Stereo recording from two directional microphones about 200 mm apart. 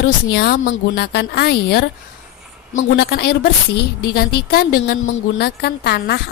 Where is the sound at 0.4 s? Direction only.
55° left (ahead or behind).